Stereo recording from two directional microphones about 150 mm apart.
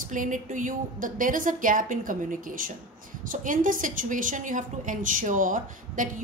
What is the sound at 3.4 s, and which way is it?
A woman's voice, 65° right (ahead or behind).